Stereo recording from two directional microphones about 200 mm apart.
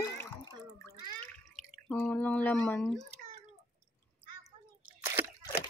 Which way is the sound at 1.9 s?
10° left (ahead or behind).